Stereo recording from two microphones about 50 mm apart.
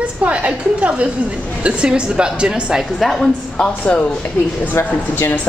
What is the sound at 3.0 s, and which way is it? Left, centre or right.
Speech, centre.